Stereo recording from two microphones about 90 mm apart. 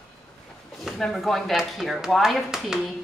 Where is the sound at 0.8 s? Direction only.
Centre (ahead or behind).